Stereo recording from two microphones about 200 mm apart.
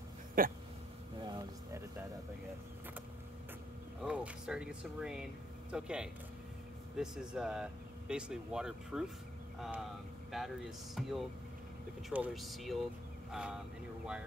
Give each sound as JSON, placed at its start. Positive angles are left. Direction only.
{"t": 0.4, "sound": "speech", "side_deg": -45}
{"t": 1.2, "sound": "a sound", "side_deg": -15}
{"t": 4.0, "sound": "speech", "side_deg": -5}